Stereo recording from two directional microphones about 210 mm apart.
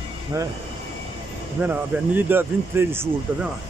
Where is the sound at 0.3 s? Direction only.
15° right (ahead or behind).